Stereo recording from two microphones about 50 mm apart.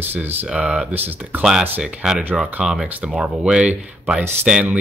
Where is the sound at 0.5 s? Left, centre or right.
Centre.